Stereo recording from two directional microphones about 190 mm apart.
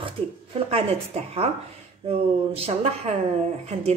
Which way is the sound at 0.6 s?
30° right (ahead or behind).